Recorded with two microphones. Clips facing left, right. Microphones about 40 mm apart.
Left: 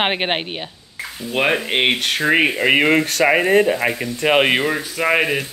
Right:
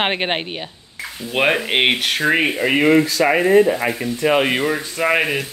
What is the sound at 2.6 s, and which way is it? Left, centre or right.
Speech, left.